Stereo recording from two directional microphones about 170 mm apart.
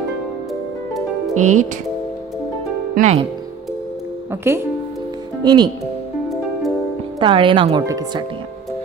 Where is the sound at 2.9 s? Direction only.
45° right (ahead or behind).